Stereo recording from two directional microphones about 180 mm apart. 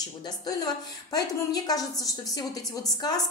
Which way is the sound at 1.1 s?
20° left (ahead or behind).